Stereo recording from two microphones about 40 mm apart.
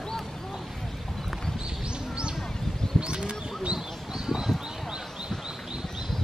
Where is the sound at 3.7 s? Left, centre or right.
Centre.